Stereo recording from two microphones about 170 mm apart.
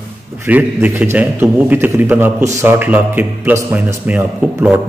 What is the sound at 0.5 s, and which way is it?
A man's voice, 10° right (ahead or behind).